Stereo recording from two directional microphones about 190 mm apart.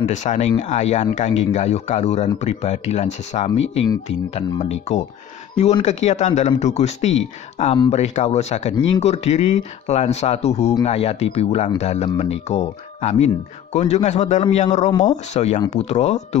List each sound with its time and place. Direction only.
0.0 s speech: 40° left (ahead or behind)
14.9 s speech: 20° left (ahead or behind)
15.3 s speech: 40° left (ahead or behind)